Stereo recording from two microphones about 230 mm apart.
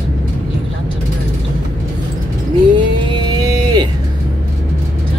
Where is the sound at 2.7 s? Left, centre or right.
Centre.